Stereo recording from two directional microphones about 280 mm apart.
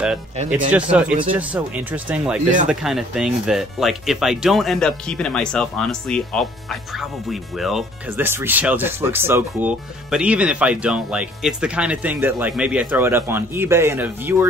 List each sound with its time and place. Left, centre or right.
0.5 s speech: centre